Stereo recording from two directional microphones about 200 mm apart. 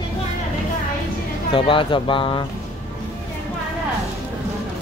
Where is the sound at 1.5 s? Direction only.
25° left (ahead or behind).